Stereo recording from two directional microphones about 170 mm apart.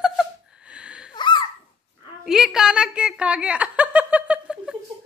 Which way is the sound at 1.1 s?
25° left (ahead or behind).